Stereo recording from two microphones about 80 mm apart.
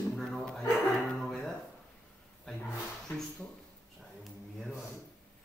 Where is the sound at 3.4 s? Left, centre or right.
Centre.